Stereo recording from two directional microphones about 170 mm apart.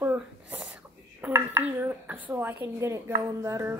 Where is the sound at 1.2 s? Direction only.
10° right (ahead or behind).